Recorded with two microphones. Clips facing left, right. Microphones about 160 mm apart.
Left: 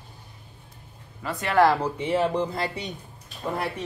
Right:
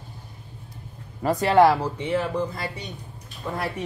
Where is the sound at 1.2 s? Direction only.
40° right (ahead or behind).